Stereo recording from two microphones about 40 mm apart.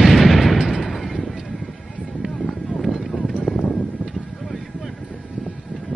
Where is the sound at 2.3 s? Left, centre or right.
Centre.